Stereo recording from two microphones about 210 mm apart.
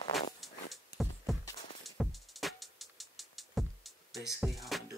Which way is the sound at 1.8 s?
Centre (ahead or behind).